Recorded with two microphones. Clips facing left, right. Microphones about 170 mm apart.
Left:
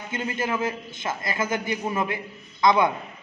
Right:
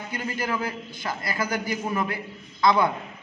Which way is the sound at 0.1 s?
25° left (ahead or behind).